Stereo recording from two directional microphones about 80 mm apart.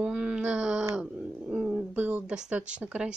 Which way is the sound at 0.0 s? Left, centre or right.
Centre.